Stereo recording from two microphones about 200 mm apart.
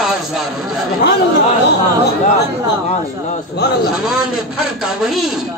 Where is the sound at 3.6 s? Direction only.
55° left (ahead or behind).